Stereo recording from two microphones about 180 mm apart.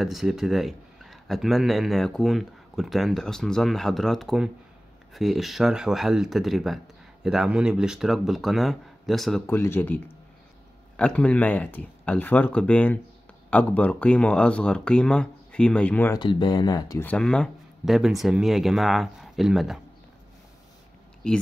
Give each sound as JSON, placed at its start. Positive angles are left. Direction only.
{"t": 0.0, "sound": "speech", "side_deg": 0}
{"t": 9.5, "sound": "speech", "side_deg": 15}
{"t": 16.2, "sound": "speech", "side_deg": 25}
{"t": 17.0, "sound": "speech", "side_deg": 5}